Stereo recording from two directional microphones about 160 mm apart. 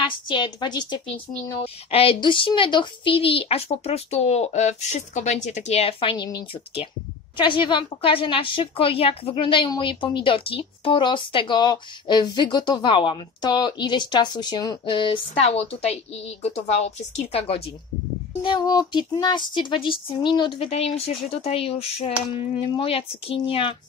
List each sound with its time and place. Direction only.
0.0 s a woman's voice: 30° left (ahead or behind)
18.4 s a woman's voice: 30° left (ahead or behind)